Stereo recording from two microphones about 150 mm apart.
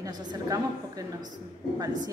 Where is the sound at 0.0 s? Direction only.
25° right (ahead or behind).